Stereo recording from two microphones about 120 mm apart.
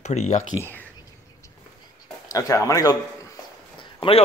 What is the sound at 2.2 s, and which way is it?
Speech, 30° left (ahead or behind).